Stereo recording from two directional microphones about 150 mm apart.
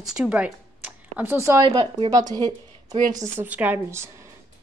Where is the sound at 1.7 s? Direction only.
30° right (ahead or behind).